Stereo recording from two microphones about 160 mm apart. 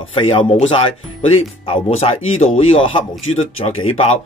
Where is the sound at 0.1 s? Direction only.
35° left (ahead or behind).